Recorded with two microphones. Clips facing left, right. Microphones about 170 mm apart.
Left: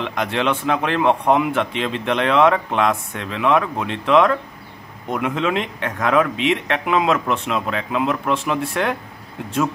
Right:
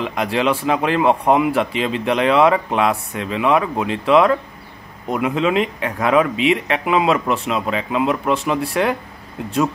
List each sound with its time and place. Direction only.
0.0 s speech: 5° right (ahead or behind)